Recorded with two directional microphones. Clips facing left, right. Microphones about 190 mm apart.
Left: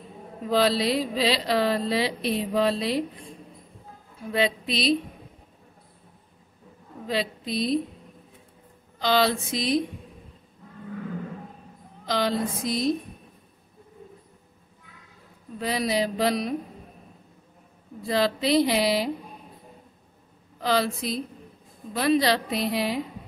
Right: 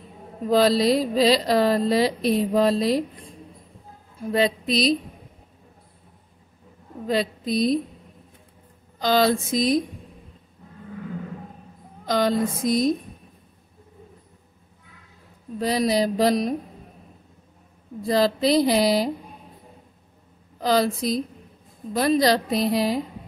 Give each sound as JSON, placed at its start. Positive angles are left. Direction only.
{"t": 0.5, "sound": "mantra", "side_deg": -40}
{"t": 4.2, "sound": "mantra", "side_deg": -40}
{"t": 7.1, "sound": "speech", "side_deg": -45}
{"t": 9.0, "sound": "speech", "side_deg": -45}
{"t": 12.1, "sound": "speech", "side_deg": -45}
{"t": 15.6, "sound": "mantra", "side_deg": -40}
{"t": 18.0, "sound": "mantra", "side_deg": -40}
{"t": 20.6, "sound": "mantra", "side_deg": -40}